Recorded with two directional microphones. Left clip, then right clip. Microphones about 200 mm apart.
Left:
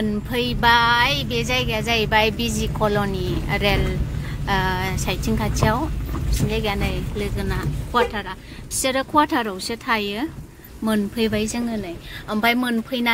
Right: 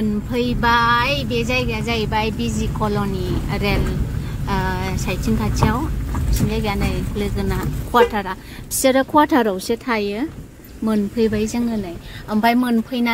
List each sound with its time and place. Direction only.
0.3 s a woman's voice: 5° left (ahead or behind); by 7.6 s 10° right (ahead or behind)
7.9 s a woman's voice: 20° right (ahead or behind); by 13.1 s centre (ahead or behind)